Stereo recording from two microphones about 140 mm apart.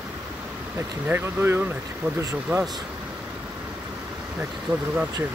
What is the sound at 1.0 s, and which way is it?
Speech, 15° right (ahead or behind).